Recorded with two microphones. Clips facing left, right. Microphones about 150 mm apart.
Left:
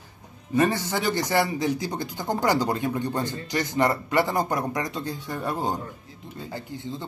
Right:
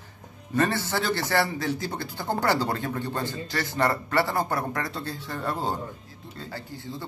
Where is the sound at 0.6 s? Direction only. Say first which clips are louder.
Left 2 dB; 15° left (ahead or behind).